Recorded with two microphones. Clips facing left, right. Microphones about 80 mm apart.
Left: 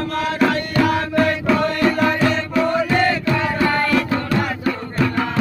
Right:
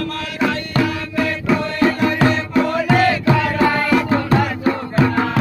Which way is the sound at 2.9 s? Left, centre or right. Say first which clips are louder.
Right 3 dB; right.